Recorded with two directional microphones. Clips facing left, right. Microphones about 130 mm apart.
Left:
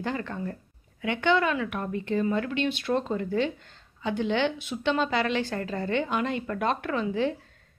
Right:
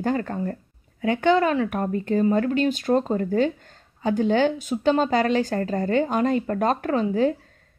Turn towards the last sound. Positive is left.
turn(degrees=-40)  # may be behind; listen again after turning